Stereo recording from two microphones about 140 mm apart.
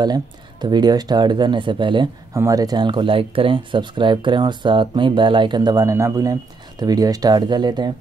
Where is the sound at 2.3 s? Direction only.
25° right (ahead or behind).